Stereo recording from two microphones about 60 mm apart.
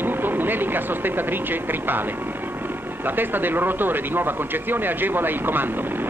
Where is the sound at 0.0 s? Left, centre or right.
Right.